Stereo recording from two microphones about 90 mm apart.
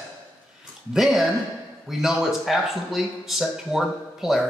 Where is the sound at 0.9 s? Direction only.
5° right (ahead or behind).